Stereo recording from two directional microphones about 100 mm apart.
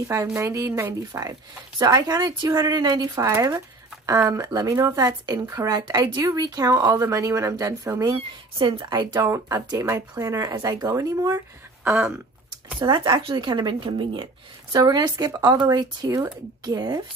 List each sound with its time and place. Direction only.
0.1 s a woman's voice: 30° right (ahead or behind)
1.8 s a woman's voice: 45° right (ahead or behind)
8.5 s a woman's voice: 55° right (ahead or behind); by 11.3 s 35° right (ahead or behind)
12.7 s a woman's voice: 50° right (ahead or behind)